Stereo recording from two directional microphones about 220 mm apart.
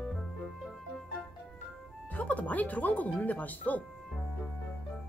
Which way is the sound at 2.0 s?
5° left (ahead or behind).